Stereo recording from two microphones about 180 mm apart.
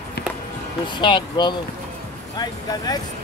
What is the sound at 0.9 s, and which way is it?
Speech, 25° left (ahead or behind).